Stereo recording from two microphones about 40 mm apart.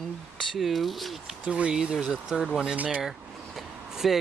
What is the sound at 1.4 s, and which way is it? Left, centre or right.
Speech, right.